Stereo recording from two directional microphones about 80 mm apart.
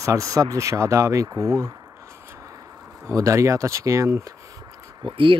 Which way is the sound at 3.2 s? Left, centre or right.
Right.